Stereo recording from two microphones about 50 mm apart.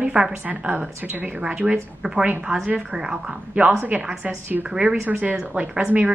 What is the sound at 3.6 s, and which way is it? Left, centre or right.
Speech, right.